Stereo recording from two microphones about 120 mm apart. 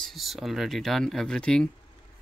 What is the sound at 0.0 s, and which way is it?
Speech, centre (ahead or behind).